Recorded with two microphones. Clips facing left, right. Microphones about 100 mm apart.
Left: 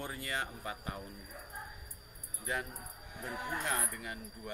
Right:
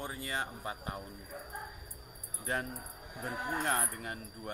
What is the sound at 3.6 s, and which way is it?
Speech, 45° right (ahead or behind).